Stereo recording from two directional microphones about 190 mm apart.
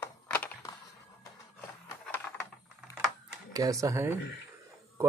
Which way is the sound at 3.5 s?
15° right (ahead or behind).